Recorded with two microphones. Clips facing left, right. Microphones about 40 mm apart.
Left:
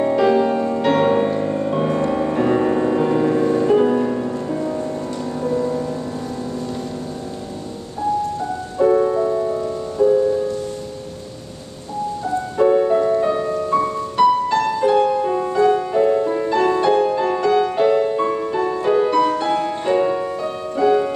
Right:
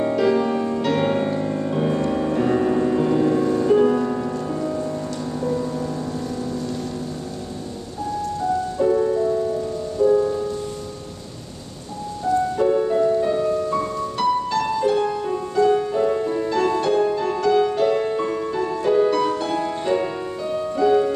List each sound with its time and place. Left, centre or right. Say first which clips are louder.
0.0 s music: left 3 dB; centre
9.0 s music: left 2 dB; left
10.1 s music: left 3 dB; centre
12.5 s music: left 9 dB; left
17.9 s music: left 4 dB; centre